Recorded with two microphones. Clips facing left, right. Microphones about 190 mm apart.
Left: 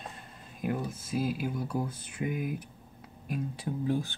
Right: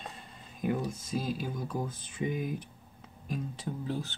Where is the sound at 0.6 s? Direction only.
5° left (ahead or behind).